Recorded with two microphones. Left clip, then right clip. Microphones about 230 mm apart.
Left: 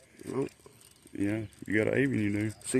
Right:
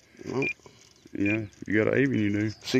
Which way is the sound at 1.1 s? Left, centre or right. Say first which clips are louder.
Right 5 dB; centre.